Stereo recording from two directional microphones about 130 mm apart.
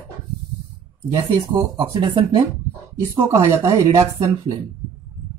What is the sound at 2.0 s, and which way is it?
Speech, 35° right (ahead or behind).